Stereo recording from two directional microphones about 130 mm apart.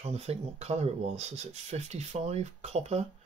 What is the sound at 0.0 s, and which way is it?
Speech, 55° right (ahead or behind).